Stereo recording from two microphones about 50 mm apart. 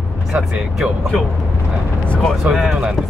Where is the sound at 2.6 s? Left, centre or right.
Centre.